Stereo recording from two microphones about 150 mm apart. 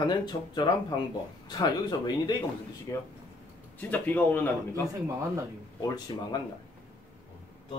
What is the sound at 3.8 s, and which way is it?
Speech, 10° left (ahead or behind).